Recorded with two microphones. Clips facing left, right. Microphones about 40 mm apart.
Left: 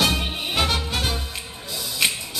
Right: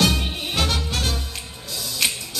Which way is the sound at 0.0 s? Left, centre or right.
Centre.